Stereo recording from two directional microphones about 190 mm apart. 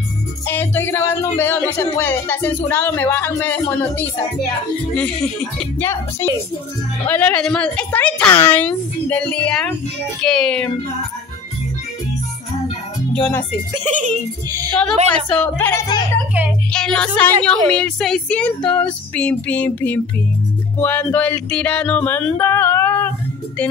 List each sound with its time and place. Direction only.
0.5 s speech: 10° left (ahead or behind)
13.1 s speech: 5° left (ahead or behind)
13.8 s speech: 40° right (ahead or behind)
15.0 s speech: 5° left (ahead or behind)